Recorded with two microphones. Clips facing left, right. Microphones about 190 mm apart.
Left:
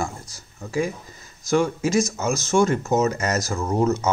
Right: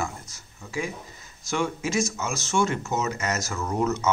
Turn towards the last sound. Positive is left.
turn(degrees=35)  # may be behind; listen again after turning